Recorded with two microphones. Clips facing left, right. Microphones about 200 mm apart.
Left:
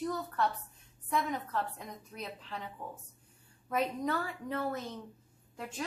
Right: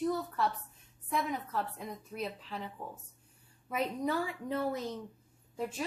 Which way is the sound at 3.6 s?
10° right (ahead or behind).